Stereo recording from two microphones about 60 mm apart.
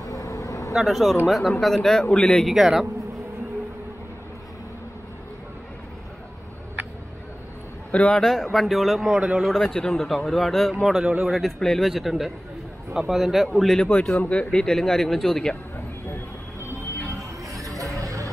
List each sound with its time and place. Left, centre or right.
0.0 s vehicle: left
0.7 s speech: centre
2.4 s speech: centre
7.9 s a man's voice: centre
8.2 s speech: centre
9.1 s speech: centre
9.4 s speech: centre
14.1 s speech: left
14.5 s speech: centre
17.1 s music: right